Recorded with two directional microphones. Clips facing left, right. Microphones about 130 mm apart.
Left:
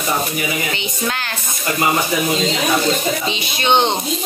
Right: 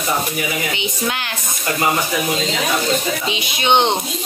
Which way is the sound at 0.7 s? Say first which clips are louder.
Even; 15° right (ahead or behind).